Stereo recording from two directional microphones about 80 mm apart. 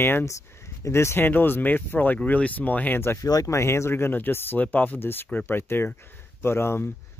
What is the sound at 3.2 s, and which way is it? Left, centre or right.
Speech, left.